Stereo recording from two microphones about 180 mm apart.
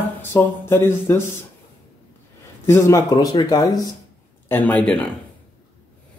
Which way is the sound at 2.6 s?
15° left (ahead or behind).